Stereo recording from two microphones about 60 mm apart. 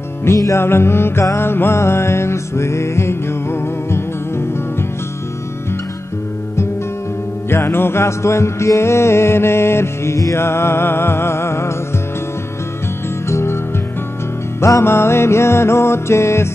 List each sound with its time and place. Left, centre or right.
0.6 s music: left
7.4 s music: left
13.3 s music: left
14.6 s music: left